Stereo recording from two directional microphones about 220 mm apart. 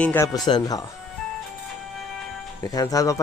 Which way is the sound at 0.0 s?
10° left (ahead or behind).